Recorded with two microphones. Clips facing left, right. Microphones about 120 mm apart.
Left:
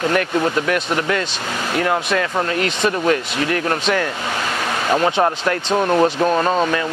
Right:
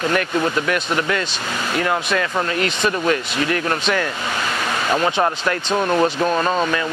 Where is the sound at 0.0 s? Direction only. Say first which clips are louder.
Left 2 dB; 45° left (ahead or behind).